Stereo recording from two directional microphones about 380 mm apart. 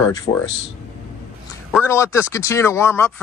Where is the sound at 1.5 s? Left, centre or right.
Centre.